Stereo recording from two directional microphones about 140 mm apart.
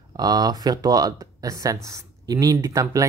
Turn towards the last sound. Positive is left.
turn(degrees=-20)  # may be behind; listen again after turning